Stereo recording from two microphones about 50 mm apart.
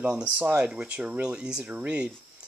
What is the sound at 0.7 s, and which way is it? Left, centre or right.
Speech, right.